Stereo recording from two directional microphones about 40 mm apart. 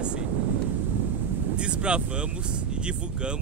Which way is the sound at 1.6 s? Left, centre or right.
Right.